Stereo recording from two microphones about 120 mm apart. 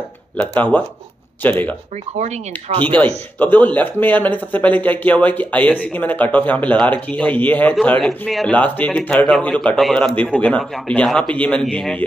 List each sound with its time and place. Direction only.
0.4 s speech: 15° left (ahead or behind)
2.1 s speech: 70° right (ahead or behind)
3.3 s speech: 15° left (ahead or behind)
7.8 s a man's voice: 5° left (ahead or behind)
8.5 s a man's voice: 10° left (ahead or behind)